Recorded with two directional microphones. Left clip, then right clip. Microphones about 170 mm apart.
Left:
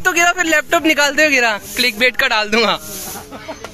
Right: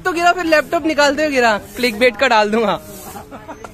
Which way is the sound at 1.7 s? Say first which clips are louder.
Left 1 dB; 10° right (ahead or behind).